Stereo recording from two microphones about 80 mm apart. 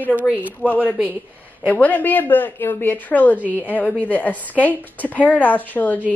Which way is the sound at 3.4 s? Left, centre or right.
Right.